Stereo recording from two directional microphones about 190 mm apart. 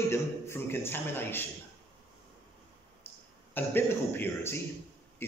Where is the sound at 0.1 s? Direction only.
10° left (ahead or behind).